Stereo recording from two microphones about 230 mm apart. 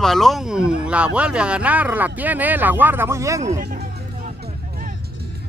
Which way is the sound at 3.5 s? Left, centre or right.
Right.